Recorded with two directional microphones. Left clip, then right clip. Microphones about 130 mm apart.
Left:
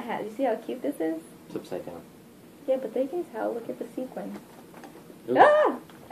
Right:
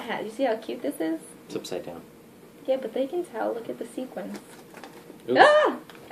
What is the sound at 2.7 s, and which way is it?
Speech, 5° left (ahead or behind).